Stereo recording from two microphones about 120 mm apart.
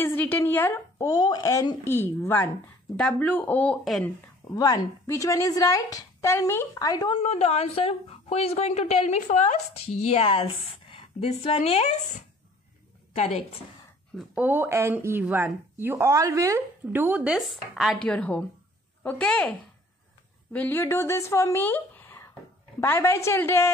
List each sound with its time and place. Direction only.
0.0 s a woman's voice: 15° left (ahead or behind)
1.9 s a woman's voice: 20° left (ahead or behind)
4.6 s a woman's voice: 30° left (ahead or behind)
7.2 s a woman's voice: 60° left (ahead or behind); by 9.6 s 85° left
9.8 s a woman's voice: 55° left (ahead or behind)
14.3 s speech: 15° right (ahead or behind)
18.0 s speech: 10° left (ahead or behind)
20.5 s a woman's voice: 15° left (ahead or behind)